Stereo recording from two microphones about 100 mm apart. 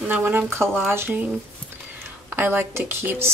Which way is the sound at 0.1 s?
20° right (ahead or behind).